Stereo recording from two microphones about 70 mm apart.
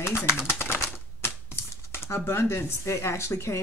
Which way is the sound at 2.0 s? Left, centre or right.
Left.